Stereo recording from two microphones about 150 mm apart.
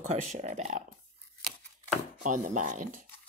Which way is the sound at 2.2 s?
55° right (ahead or behind).